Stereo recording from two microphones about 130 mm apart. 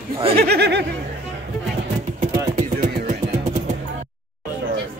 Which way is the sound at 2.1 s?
80° right.